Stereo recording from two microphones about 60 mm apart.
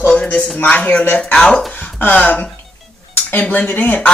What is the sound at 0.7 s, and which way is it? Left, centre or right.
Speech, left.